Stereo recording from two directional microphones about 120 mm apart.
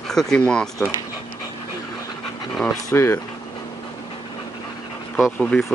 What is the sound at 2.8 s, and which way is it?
Speech, 25° left (ahead or behind).